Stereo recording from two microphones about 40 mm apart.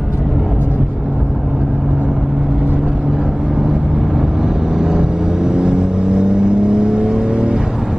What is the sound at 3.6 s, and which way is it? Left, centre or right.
Vehicle, centre.